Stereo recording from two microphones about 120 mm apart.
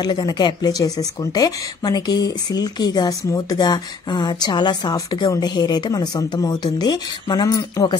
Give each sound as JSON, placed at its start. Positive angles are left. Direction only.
{"t": 0.0, "sound": "speech", "side_deg": 35}